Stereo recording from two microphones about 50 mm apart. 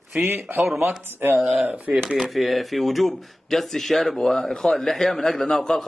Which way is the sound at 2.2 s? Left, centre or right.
Centre.